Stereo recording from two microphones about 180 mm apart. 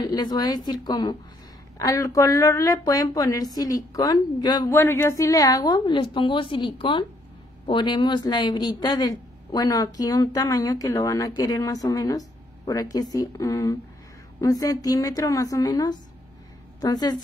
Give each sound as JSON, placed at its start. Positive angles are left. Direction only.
{"t": 0.0, "sound": "speech", "side_deg": 20}